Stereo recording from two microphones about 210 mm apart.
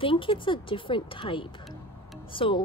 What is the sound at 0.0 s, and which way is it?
Speech, 25° left (ahead or behind).